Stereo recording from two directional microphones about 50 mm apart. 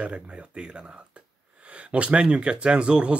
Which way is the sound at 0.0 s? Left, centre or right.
Right.